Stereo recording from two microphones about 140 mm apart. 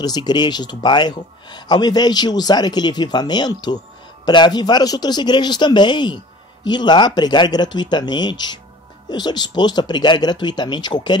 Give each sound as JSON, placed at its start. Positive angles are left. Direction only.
{"t": 0.0, "sound": "speech", "side_deg": 30}